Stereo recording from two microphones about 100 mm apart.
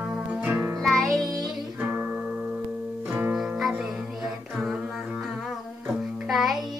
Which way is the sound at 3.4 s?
5° right (ahead or behind).